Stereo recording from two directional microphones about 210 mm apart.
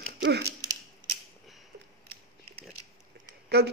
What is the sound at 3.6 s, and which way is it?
Speech, 50° right (ahead or behind).